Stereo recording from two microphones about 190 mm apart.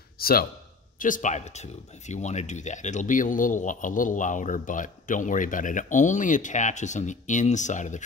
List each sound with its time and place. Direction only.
0.2 s a man's voice: 50° left (ahead or behind)